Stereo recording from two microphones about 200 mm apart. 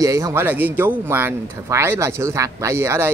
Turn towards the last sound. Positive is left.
turn(degrees=-15)  # may be behind; listen again after turning